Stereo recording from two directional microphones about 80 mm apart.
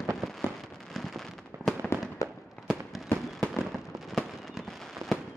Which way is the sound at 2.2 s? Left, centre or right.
Left.